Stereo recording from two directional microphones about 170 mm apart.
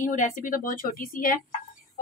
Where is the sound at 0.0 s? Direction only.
50° left (ahead or behind).